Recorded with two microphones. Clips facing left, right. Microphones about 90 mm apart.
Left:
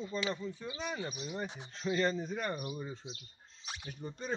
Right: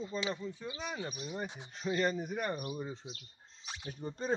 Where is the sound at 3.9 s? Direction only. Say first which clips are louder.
Right 4 dB; 40° right (ahead or behind).